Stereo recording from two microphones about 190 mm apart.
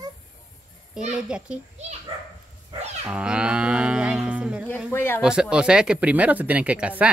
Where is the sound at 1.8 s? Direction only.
35° right (ahead or behind).